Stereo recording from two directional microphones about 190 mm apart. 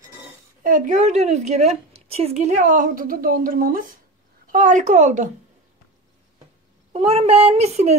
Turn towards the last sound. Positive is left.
turn(degrees=-35)  # may be behind; listen again after turning